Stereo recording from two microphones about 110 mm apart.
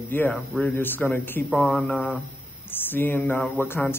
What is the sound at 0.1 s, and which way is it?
A man's voice, 15° left (ahead or behind).